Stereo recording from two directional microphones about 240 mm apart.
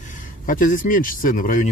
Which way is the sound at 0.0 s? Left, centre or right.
Left.